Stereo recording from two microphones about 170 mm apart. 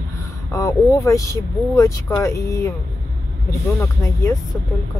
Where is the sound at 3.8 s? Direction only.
15° left (ahead or behind).